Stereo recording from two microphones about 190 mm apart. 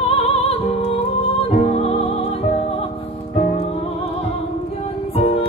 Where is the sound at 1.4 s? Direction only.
30° left (ahead or behind).